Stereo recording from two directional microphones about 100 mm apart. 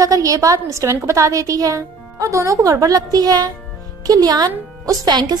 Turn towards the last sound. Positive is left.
turn(degrees=-45)  # may be behind; listen again after turning